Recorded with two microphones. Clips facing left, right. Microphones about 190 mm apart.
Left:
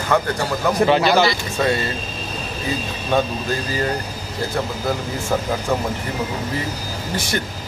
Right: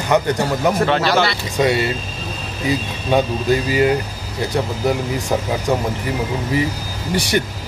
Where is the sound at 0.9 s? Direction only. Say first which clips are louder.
Left 1 dB; centre (ahead or behind).